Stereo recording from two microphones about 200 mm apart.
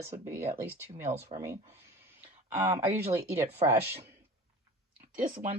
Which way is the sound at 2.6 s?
15° right (ahead or behind).